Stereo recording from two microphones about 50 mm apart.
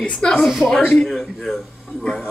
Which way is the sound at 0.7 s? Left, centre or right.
Centre.